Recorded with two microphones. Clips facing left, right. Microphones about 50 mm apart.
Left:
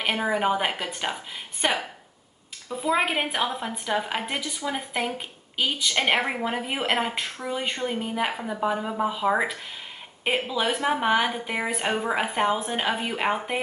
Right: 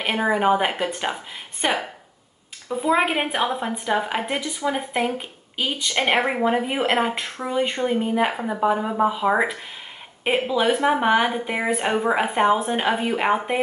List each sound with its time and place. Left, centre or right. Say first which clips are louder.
0.0 s a woman's voice: right 4 dB; centre
7.2 s speech: right 3 dB; right
7.5 s a woman's voice: right 7 dB; centre